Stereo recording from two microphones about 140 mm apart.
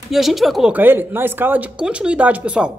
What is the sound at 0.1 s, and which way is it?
Speech, centre (ahead or behind).